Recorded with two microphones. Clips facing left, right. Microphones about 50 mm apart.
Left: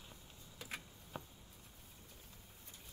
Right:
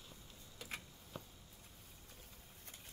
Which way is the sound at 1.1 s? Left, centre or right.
Left.